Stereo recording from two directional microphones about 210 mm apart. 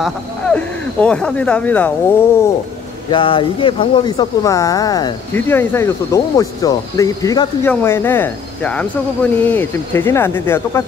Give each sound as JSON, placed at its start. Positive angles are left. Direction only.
{"t": 0.0, "sound": "speech", "side_deg": 5}
{"t": 3.1, "sound": "speech", "side_deg": 25}